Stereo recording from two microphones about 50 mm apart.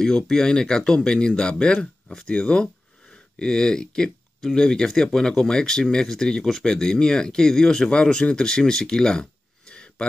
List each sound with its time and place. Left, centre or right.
0.0 s speech: centre